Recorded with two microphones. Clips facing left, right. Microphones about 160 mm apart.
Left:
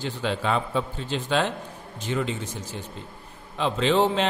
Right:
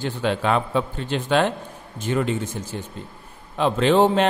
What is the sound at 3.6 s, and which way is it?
Speech, 55° right (ahead or behind).